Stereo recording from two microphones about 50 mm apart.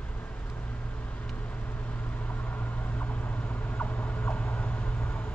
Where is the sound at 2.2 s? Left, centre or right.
Left.